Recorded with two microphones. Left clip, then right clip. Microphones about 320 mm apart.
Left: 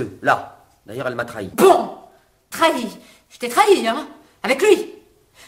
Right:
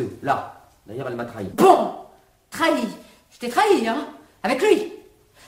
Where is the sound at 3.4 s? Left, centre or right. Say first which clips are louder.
Left 3 dB; centre.